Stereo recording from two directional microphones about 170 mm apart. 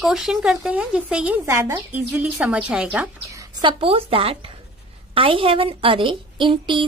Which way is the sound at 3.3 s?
30° right (ahead or behind).